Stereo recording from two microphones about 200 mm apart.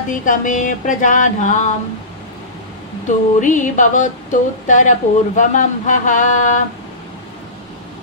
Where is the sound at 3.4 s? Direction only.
40° left (ahead or behind).